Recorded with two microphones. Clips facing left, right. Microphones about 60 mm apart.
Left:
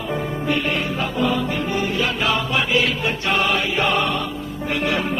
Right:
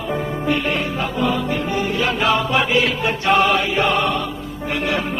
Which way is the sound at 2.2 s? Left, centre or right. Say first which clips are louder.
Right 6 dB; right.